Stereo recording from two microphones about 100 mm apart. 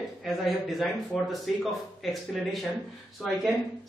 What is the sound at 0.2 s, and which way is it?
A man's voice, centre (ahead or behind).